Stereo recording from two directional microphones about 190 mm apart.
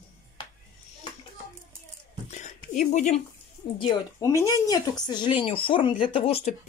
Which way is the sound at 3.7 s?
25° left (ahead or behind).